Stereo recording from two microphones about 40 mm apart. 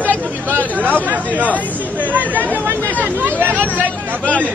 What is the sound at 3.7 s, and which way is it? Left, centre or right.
Speech, left.